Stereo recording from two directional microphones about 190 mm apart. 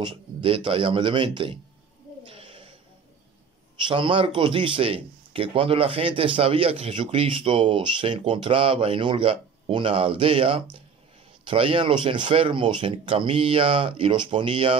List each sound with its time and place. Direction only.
0.0 s speech: 25° right (ahead or behind)
2.2 s a sound: 30° right (ahead or behind)
3.8 s speech: 25° right (ahead or behind)